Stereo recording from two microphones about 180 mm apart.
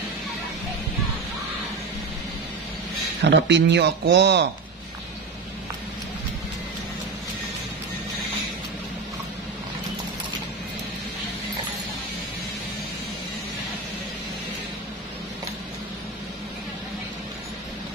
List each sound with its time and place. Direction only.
3.3 s speech: 75° right (ahead or behind)